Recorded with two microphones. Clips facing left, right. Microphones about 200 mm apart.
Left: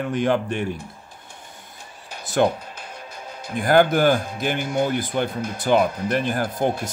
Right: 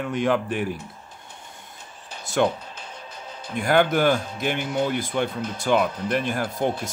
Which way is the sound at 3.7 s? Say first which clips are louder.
Left 3 dB; 35° left (ahead or behind).